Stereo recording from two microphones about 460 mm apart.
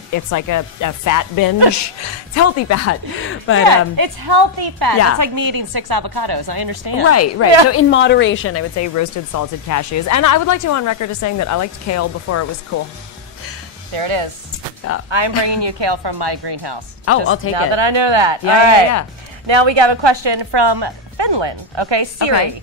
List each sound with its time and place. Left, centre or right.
0.1 s a woman's voice: left
3.6 s a woman's voice: right
7.1 s a woman's voice: left
13.9 s speech: right
15.0 s a woman's voice: right
17.1 s a woman's voice: left
17.6 s speech: right
18.6 s speech: right
19.4 s a woman's voice: right